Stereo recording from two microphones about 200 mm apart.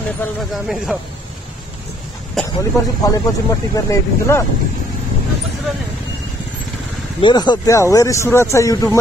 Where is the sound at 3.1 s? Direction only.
20° left (ahead or behind).